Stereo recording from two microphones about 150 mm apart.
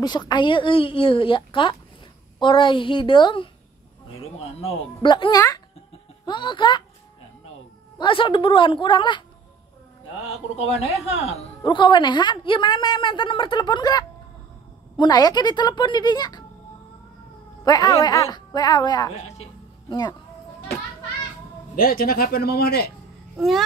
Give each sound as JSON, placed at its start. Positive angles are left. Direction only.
{"t": 0.0, "sound": "a woman's voice", "side_deg": 30}
{"t": 4.2, "sound": "a man's voice", "side_deg": 40}
{"t": 5.1, "sound": "a woman's voice", "side_deg": 25}
{"t": 8.0, "sound": "a woman's voice", "side_deg": 35}
{"t": 10.2, "sound": "a man's voice", "side_deg": 45}
{"t": 11.6, "sound": "a woman's voice", "side_deg": 30}
{"t": 17.6, "sound": "a woman's voice", "side_deg": 25}
{"t": 19.1, "sound": "a man's voice", "side_deg": 45}
{"t": 19.9, "sound": "a woman's voice", "side_deg": 25}
{"t": 21.7, "sound": "speech", "side_deg": 75}
{"t": 23.3, "sound": "babbling", "side_deg": 0}